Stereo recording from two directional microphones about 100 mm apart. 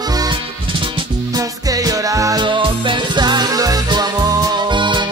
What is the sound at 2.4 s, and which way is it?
Music, 55° right (ahead or behind).